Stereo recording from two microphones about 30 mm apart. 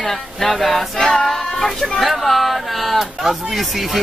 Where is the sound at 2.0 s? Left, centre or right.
Centre.